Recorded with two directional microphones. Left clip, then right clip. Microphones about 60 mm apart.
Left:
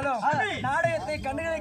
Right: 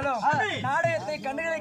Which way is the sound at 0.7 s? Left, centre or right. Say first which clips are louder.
Left 1 dB; centre.